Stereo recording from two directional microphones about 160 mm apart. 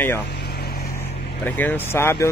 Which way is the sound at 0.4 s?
85° left.